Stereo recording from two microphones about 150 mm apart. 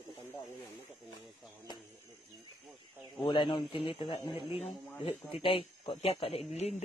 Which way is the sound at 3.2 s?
30° left (ahead or behind).